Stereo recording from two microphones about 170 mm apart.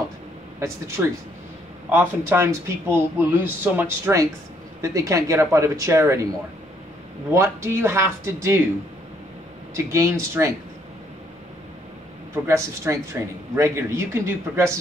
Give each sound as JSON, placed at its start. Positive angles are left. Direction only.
{"t": 0.6, "sound": "speech", "side_deg": -15}
{"t": 7.3, "sound": "speech", "side_deg": -15}
{"t": 9.8, "sound": "speech", "side_deg": -15}
{"t": 12.4, "sound": "speech", "side_deg": -15}